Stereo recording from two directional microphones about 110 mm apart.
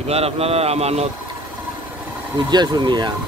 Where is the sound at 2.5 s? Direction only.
40° right (ahead or behind).